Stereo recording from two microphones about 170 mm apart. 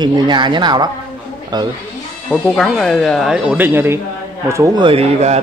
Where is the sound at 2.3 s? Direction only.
Centre (ahead or behind); by 4.9 s 20° right (ahead or behind).